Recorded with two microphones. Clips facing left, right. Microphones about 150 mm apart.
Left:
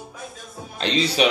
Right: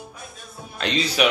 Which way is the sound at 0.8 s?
30° left (ahead or behind).